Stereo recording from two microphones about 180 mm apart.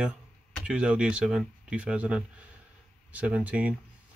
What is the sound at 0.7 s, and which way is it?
Speech, 5° right (ahead or behind).